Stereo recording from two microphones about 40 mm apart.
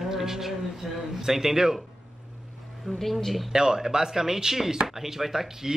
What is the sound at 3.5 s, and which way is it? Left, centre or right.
Speech, centre.